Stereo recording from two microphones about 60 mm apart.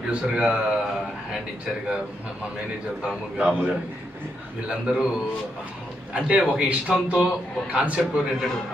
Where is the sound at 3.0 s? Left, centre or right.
Centre.